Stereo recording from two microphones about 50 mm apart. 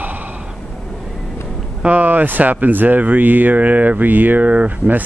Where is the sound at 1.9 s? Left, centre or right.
Right.